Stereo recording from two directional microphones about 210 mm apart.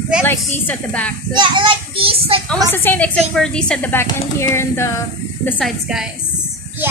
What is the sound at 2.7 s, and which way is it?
A woman's voice, 10° left (ahead or behind).